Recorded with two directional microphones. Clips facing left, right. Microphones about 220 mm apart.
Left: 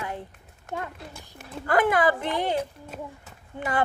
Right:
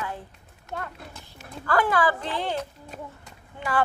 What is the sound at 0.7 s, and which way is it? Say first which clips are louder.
A woman's voice: left 2 dB; 15° left (ahead or behind).